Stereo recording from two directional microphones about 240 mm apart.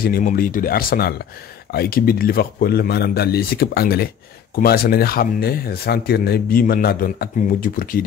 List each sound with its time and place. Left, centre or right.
0.0 s speech: left